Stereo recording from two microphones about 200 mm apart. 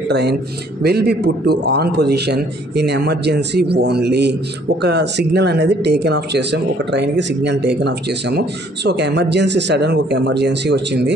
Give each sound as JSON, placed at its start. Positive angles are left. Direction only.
{"t": 0.1, "sound": "speech", "side_deg": -55}